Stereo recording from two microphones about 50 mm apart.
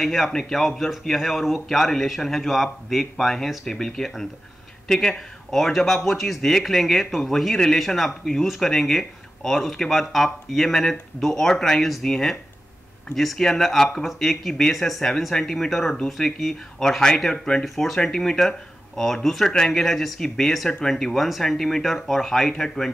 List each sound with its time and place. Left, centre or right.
0.0 s speech: centre